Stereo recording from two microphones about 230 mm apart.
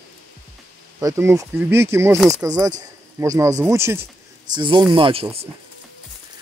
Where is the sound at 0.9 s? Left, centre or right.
Centre.